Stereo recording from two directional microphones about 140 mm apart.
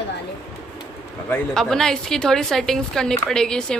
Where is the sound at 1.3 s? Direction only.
5° left (ahead or behind).